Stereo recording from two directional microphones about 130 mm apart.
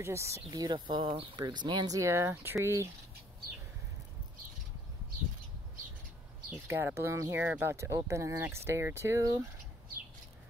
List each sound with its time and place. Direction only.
0.0 s speech: 20° right (ahead or behind)
0.5 s speech: 30° right (ahead or behind)
2.0 s speech: 20° right (ahead or behind)
6.5 s speech: 20° right (ahead or behind)